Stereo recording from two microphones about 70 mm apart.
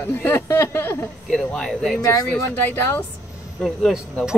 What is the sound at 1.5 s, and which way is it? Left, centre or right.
Speech, centre.